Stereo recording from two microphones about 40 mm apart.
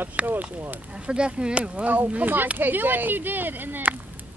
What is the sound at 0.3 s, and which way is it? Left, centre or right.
Speech, right.